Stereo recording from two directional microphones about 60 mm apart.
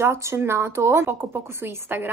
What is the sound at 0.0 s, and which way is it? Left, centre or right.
A woman's voice, right.